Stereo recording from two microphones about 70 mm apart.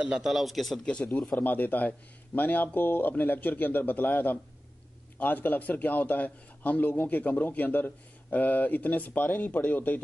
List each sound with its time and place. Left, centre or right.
0.0 s speech: centre
0.8 s speech: centre
1.3 s a man's voice: left